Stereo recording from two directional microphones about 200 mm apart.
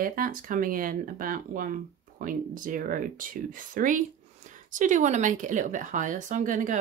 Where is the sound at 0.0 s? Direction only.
45° right (ahead or behind).